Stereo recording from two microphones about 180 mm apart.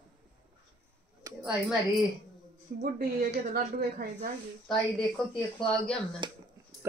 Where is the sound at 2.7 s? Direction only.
60° right (ahead or behind).